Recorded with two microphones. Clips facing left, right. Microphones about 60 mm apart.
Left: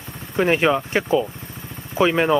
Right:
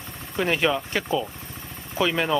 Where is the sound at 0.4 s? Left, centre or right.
Left.